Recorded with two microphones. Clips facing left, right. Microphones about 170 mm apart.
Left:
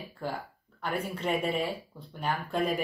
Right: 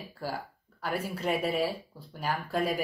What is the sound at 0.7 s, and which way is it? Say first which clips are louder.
Speech: even; 5° right (ahead or behind).